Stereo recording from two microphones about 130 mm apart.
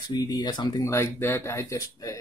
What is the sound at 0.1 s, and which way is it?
Speech, 30° left (ahead or behind).